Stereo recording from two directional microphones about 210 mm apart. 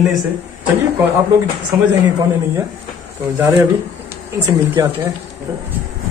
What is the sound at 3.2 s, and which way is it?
A man's voice, 10° right (ahead or behind).